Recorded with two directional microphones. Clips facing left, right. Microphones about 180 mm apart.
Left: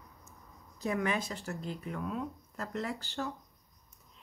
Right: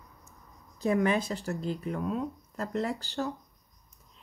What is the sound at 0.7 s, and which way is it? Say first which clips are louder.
Speech: right 6 dB; 30° right (ahead or behind).